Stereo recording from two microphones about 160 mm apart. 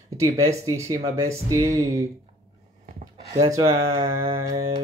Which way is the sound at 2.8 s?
40° right (ahead or behind).